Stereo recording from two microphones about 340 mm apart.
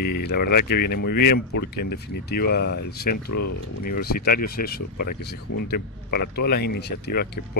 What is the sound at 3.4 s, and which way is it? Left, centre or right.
Speech, left.